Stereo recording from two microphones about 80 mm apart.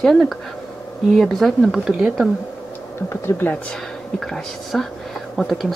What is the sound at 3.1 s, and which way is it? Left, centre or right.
Speech, left.